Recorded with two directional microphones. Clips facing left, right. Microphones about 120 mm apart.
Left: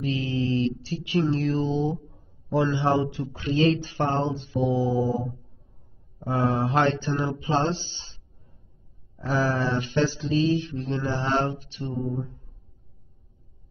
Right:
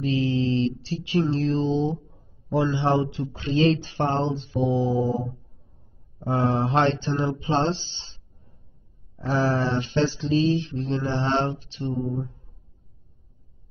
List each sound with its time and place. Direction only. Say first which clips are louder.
0.0 s mantra: right 3 dB; 25° right (ahead or behind)
9.3 s mantra: right 2 dB; 30° right (ahead or behind)
9.6 s music: right 1 dB; 35° right (ahead or behind)
11.1 s mantra: even; 25° right (ahead or behind)